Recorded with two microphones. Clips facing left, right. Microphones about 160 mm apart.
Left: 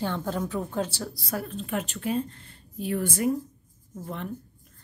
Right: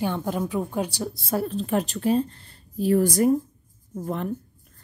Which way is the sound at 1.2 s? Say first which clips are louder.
Right 8 dB; 30° right (ahead or behind).